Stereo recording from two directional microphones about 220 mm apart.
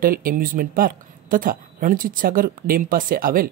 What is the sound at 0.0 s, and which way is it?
A woman's voice, 40° right (ahead or behind).